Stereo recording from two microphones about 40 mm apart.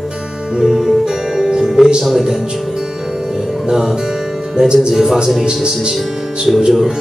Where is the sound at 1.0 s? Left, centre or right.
Centre.